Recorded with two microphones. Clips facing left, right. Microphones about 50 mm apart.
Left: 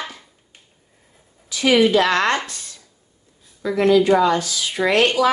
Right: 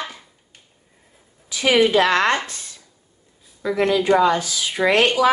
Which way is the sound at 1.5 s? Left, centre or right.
Centre.